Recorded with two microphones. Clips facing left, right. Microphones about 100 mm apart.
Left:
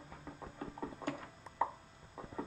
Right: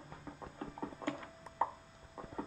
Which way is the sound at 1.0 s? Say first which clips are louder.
Right 1 dB; 15° left (ahead or behind).